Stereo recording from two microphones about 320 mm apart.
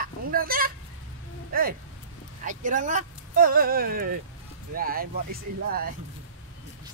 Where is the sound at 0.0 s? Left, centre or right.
Right.